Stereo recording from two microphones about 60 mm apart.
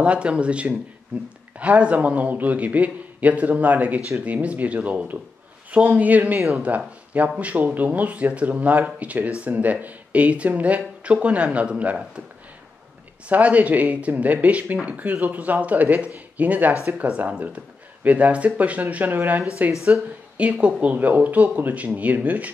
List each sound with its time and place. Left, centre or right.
0.0 s a man's voice: centre
13.3 s a man's voice: right